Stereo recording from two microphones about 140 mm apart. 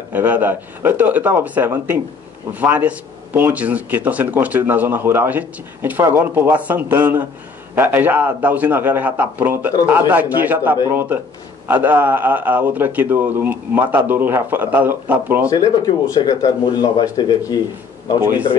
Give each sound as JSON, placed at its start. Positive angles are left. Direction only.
{"t": 0.1, "sound": "a man's voice", "side_deg": -15}
{"t": 16.2, "sound": "speech", "side_deg": 30}